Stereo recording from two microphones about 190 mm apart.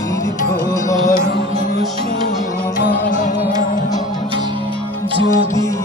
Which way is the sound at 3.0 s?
40° left (ahead or behind).